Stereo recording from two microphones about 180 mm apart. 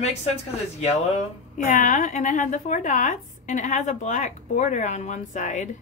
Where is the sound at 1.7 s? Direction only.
45° left (ahead or behind).